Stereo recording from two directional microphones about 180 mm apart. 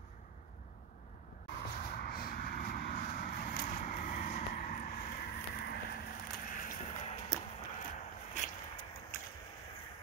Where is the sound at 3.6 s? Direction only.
45° left (ahead or behind).